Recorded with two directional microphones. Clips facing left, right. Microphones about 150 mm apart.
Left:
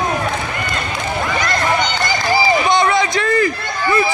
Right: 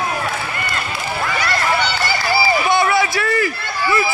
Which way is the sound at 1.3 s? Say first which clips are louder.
Left 1 dB; 15° left (ahead or behind).